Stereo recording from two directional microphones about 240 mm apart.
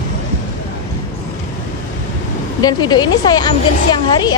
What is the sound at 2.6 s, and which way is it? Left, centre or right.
Speech, centre.